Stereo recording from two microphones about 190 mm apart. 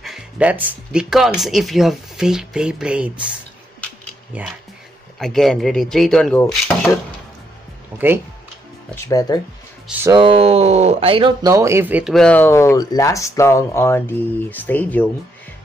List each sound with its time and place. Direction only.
0.0 s speech: 5° right (ahead or behind)
4.3 s speech: 5° right (ahead or behind)
6.4 s speech: 15° left (ahead or behind)
8.9 s speech: 15° left (ahead or behind)
10.0 s speech: 25° right (ahead or behind); by 15.0 s 10° left (ahead or behind)